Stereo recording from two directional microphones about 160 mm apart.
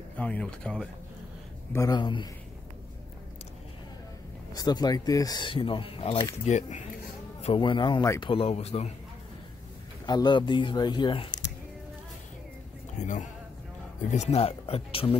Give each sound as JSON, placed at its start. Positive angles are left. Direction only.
{"t": 0.2, "sound": "speech", "side_deg": 5}
{"t": 1.7, "sound": "speech", "side_deg": 25}
{"t": 4.6, "sound": "speech", "side_deg": 25}
{"t": 6.4, "sound": "speech", "side_deg": 45}
{"t": 7.4, "sound": "speech", "side_deg": 30}
{"t": 8.3, "sound": "speech", "side_deg": 35}
{"t": 10.0, "sound": "speech", "side_deg": 25}
{"t": 13.0, "sound": "speech", "side_deg": 50}